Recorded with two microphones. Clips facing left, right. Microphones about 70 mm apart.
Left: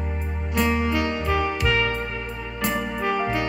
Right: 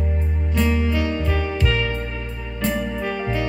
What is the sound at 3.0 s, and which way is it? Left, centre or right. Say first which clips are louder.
Music: left 2 dB; left.